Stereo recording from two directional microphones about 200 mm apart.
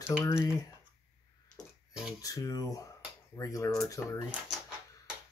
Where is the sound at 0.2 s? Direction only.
15° left (ahead or behind).